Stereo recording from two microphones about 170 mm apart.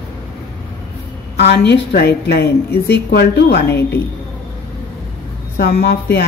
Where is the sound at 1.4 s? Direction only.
75° left (ahead or behind).